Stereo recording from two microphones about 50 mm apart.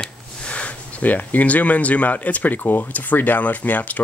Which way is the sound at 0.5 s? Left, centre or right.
Left.